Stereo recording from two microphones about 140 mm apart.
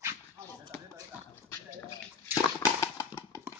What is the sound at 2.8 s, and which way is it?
Clip-clop, 20° left (ahead or behind).